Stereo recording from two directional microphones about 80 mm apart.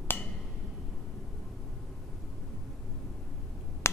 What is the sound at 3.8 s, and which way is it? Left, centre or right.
Finger snapping, left.